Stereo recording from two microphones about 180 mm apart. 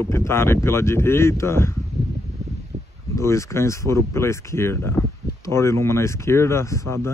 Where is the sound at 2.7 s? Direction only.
40° right (ahead or behind).